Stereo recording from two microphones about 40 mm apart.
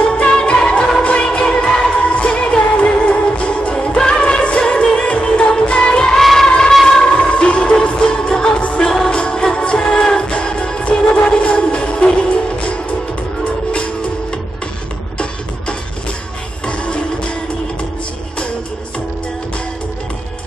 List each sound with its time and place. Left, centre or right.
0.0 s music: left
6.1 s music: centre
6.9 s music: left
9.1 s music: left
16.6 s music: left